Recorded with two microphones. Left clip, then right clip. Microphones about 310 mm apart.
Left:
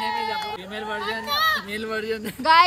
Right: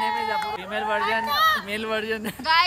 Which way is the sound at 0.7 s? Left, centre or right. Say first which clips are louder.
Right 7 dB; right.